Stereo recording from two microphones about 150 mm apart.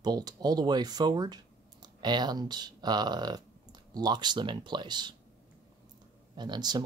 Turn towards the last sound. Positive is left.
turn(degrees=-30)  # may be behind; listen again after turning